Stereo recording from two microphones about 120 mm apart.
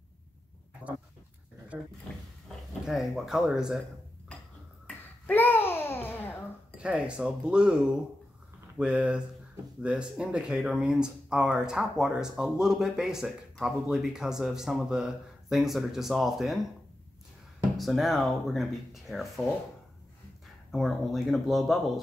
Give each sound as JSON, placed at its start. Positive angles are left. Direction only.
{"t": 0.8, "sound": "dog", "side_deg": -15}
{"t": 1.7, "sound": "speech", "side_deg": -10}
{"t": 2.9, "sound": "speech", "side_deg": -5}
{"t": 4.8, "sound": "babbling", "side_deg": 15}
{"t": 6.8, "sound": "speech", "side_deg": -10}
{"t": 17.7, "sound": "speech", "side_deg": 0}
{"t": 20.7, "sound": "speech", "side_deg": 0}